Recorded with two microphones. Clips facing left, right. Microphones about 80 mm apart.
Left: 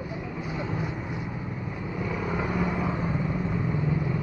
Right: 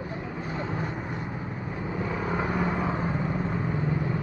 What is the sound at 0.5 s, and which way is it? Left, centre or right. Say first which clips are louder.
Vehicle: even; right.